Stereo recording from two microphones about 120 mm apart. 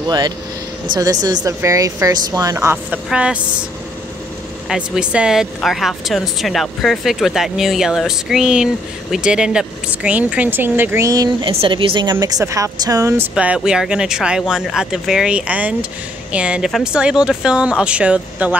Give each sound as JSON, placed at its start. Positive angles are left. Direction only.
{"t": 0.0, "sound": "a woman's voice", "side_deg": -35}
{"t": 3.1, "sound": "speech", "side_deg": -10}
{"t": 4.6, "sound": "speech", "side_deg": -5}
{"t": 11.4, "sound": "a woman's voice", "side_deg": -45}
{"t": 13.3, "sound": "speech", "side_deg": -10}